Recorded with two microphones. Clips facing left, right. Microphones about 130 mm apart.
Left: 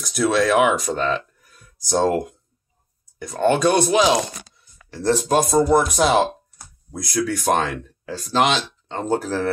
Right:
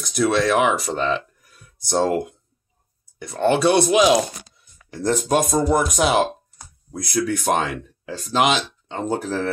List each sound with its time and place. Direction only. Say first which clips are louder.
0.0 s speech: even; centre (ahead or behind)